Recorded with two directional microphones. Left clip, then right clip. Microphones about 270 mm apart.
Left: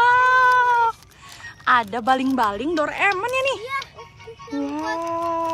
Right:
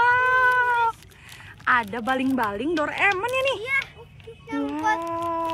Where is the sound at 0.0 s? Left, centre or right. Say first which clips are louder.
Left 4 dB; centre.